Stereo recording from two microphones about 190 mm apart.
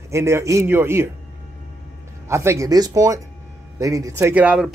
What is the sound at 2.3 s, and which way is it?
Speech, 15° right (ahead or behind).